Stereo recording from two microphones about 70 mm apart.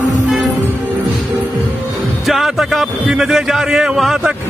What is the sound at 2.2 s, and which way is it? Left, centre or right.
A man's voice, centre.